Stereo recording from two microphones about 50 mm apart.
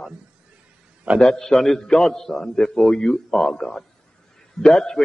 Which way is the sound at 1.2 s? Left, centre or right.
Centre.